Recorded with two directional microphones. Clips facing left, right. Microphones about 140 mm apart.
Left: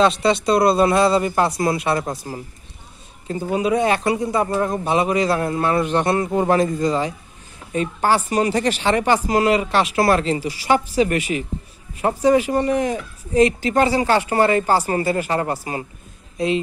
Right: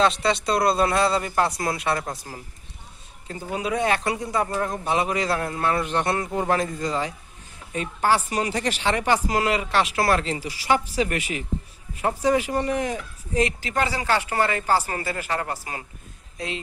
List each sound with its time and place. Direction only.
0.0 s a woman's voice: 10° left (ahead or behind)